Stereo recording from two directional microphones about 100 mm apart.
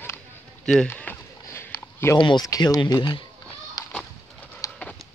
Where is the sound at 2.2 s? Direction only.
50° left (ahead or behind).